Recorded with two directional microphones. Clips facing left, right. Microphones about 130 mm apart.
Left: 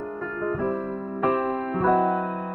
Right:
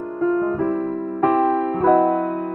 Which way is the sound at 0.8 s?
50° right (ahead or behind).